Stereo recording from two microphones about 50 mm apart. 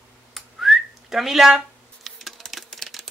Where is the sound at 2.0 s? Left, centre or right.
Centre.